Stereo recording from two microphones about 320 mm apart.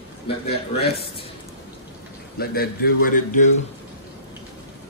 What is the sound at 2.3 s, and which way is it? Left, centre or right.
A man's voice, left.